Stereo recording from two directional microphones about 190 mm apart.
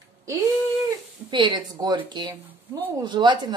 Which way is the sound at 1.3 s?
25° right (ahead or behind).